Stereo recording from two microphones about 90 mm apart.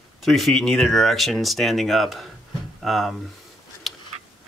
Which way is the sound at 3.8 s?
Centre (ahead or behind).